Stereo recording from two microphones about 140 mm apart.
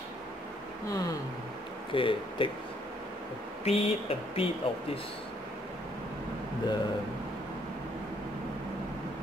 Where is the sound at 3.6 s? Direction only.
45° left (ahead or behind).